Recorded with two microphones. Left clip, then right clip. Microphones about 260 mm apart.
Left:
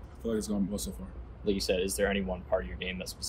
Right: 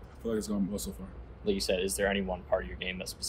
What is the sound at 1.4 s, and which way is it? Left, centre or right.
Speech, right.